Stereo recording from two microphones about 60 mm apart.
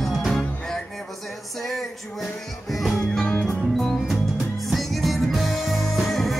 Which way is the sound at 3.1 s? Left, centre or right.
Centre.